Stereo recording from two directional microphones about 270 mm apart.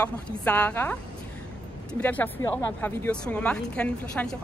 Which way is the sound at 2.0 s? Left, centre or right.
Centre.